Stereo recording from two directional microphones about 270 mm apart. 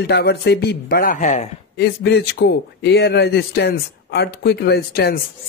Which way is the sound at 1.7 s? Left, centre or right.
Left.